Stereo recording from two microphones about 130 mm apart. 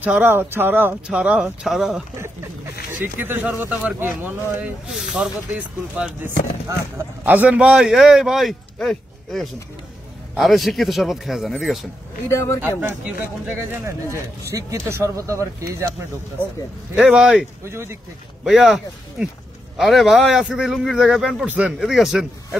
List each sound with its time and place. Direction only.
0.0 s speech: 15° right (ahead or behind)
3.0 s speech: 15° right (ahead or behind)
4.9 s a man's voice: 5° right (ahead or behind)
12.6 s speech: 15° right (ahead or behind)
16.9 s a man's voice: 5° right (ahead or behind)
17.6 s speech: 20° right (ahead or behind)
18.4 s a man's voice: 5° right (ahead or behind)